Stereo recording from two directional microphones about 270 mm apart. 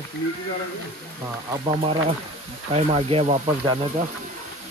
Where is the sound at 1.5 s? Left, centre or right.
Centre.